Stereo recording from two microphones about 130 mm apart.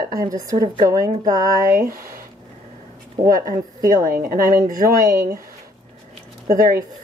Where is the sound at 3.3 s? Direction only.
90° right.